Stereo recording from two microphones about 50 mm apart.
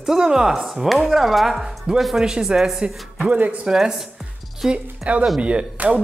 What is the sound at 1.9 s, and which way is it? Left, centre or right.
Speech, centre.